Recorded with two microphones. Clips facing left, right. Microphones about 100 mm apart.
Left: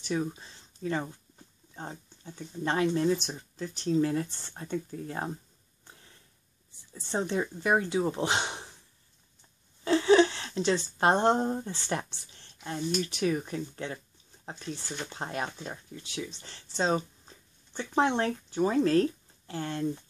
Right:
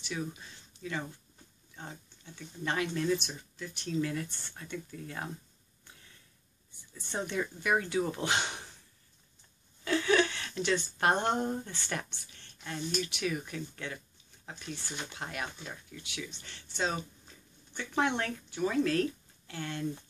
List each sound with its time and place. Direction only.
0.0 s speech: 35° left (ahead or behind)
5.9 s a sound: 30° left (ahead or behind)
6.9 s speech: 30° left (ahead or behind)
9.8 s a woman's voice: 30° left (ahead or behind)